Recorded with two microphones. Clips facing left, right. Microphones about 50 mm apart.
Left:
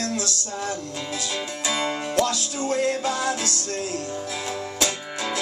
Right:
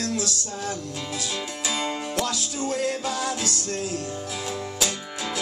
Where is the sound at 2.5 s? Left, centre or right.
Left.